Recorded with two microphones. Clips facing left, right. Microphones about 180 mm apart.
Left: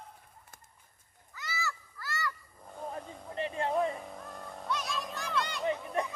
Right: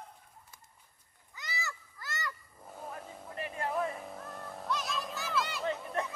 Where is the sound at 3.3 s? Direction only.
25° left (ahead or behind).